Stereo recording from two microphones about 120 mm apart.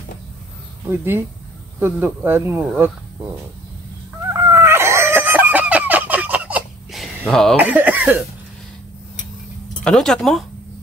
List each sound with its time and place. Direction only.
0.8 s speech: 20° right (ahead or behind)
4.3 s chicken: 20° right (ahead or behind)
7.2 s speech: 5° left (ahead or behind)
7.5 s speech: 15° right (ahead or behind)
9.8 s speech: 5° left (ahead or behind)